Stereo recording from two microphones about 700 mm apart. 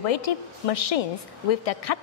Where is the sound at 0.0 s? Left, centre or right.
Left.